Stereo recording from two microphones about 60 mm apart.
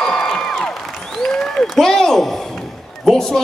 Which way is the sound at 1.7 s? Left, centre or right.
Centre.